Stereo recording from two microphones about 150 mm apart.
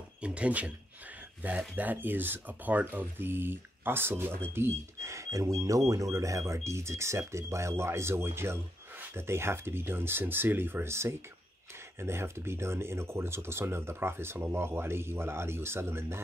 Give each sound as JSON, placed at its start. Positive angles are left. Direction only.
{"t": 0.2, "sound": "speech", "side_deg": -5}